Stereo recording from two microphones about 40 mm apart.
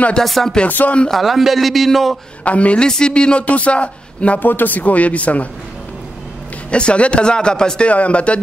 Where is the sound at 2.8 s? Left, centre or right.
Left.